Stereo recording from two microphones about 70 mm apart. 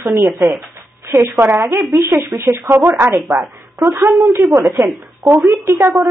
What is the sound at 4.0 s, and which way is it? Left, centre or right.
Speech, centre.